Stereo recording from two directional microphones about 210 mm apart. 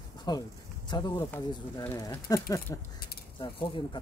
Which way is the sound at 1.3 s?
10° left (ahead or behind).